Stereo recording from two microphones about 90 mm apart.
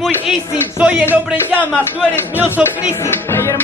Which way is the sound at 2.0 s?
10° left (ahead or behind).